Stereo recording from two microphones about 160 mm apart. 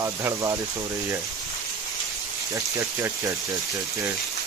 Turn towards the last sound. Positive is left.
turn(degrees=-20)  # may be behind; listen again after turning